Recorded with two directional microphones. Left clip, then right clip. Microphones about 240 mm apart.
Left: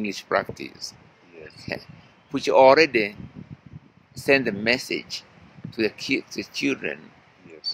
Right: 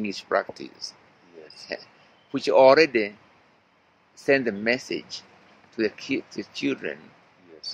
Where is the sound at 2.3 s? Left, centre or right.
Centre.